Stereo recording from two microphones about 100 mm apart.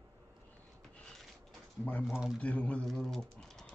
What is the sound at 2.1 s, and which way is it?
Speech, 5° right (ahead or behind).